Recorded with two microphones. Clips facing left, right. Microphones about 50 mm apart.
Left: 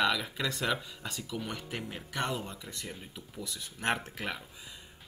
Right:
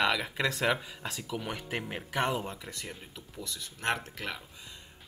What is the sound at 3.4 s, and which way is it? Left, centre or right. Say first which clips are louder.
Speech: even; centre.